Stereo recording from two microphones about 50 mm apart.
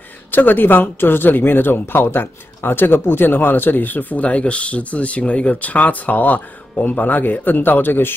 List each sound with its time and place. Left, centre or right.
0.3 s speech: left